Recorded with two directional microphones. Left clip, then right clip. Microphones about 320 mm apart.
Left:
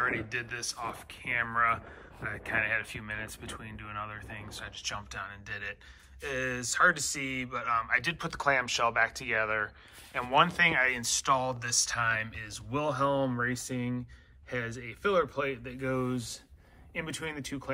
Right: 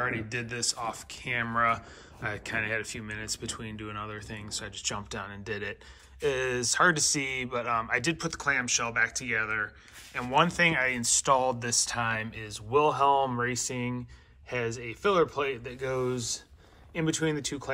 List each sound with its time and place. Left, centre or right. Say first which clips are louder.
0.0 s speech: even; centre